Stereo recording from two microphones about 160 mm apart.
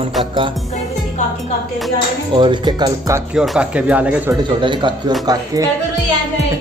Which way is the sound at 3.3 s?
5° right (ahead or behind).